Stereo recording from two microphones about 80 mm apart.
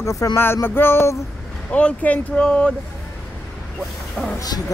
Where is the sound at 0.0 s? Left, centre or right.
Left.